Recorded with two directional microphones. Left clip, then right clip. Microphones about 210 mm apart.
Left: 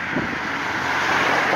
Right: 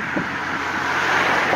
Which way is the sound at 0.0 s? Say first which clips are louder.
Even; 45° left (ahead or behind).